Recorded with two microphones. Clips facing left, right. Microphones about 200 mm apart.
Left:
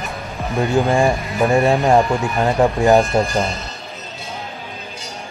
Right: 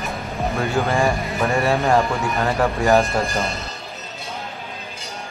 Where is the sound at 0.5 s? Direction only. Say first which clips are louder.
Left 6 dB; 15° left (ahead or behind).